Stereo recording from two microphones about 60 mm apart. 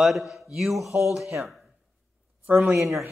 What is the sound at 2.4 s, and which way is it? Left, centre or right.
Speech, right.